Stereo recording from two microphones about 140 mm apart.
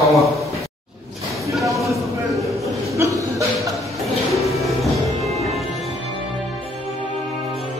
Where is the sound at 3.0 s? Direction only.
20° right (ahead or behind).